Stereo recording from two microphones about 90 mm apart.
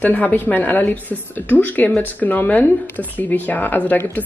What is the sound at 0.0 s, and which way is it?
Speech, 20° left (ahead or behind).